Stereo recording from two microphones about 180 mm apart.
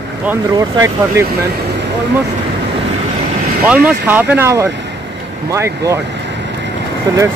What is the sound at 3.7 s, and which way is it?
Speech, 10° right (ahead or behind).